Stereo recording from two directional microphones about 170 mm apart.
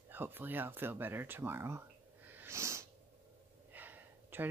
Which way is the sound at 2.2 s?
10° right (ahead or behind).